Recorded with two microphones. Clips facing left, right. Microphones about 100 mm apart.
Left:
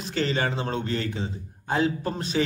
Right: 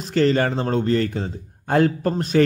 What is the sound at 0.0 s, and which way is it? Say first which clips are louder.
A man's voice: right 8 dB; 50° right (ahead or behind).